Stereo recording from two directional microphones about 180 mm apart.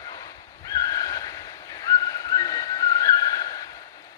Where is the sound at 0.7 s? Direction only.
20° left (ahead or behind).